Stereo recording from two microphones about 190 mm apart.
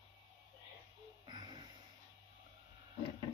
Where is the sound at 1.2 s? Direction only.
20° right (ahead or behind).